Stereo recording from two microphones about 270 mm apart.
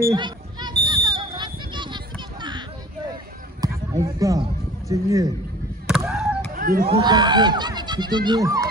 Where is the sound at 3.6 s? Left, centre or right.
Centre.